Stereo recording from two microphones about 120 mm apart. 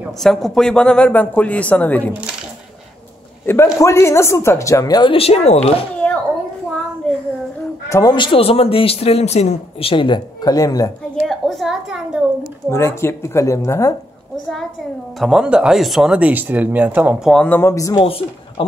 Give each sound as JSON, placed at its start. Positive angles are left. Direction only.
{"t": 0.2, "sound": "speech", "side_deg": 5}
{"t": 3.4, "sound": "a woman's voice", "side_deg": 25}
{"t": 5.1, "sound": "speech", "side_deg": 55}
{"t": 6.0, "sound": "a sound", "side_deg": 10}
{"t": 7.9, "sound": "speech", "side_deg": 35}
{"t": 11.2, "sound": "a sound", "side_deg": 0}
{"t": 12.6, "sound": "a woman's voice", "side_deg": 20}
{"t": 15.1, "sound": "speech", "side_deg": -5}
{"t": 17.5, "sound": "a woman's voice", "side_deg": 20}
{"t": 18.0, "sound": "a woman's voice", "side_deg": 50}